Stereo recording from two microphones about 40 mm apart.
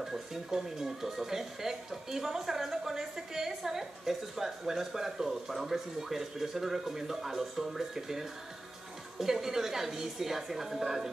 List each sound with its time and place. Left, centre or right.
0.0 s speech: centre